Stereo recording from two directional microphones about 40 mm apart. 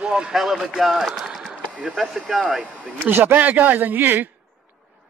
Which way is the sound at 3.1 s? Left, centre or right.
Right.